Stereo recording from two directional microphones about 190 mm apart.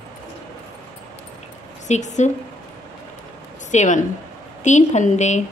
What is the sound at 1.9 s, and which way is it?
Speech, 40° left (ahead or behind).